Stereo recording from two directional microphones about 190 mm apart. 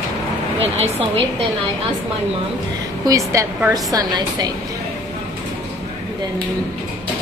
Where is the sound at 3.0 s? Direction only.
15° right (ahead or behind).